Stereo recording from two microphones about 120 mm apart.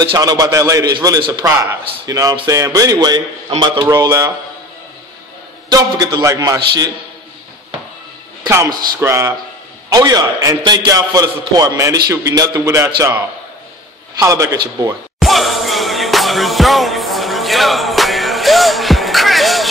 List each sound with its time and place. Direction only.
0.1 s a man's voice: 30° right (ahead or behind)
1.5 s a man's voice: 20° right (ahead or behind)
2.0 s a man's voice: 30° right (ahead or behind)
3.8 s a man's voice: 25° right (ahead or behind)
5.7 s a man's voice: 30° right (ahead or behind)
9.0 s a man's voice: 25° right (ahead or behind)
10.6 s a man's voice: 40° right (ahead or behind)
10.9 s a man's voice: 30° right (ahead or behind)
14.2 s a man's voice: 25° right (ahead or behind)
15.1 s music: centre (ahead or behind)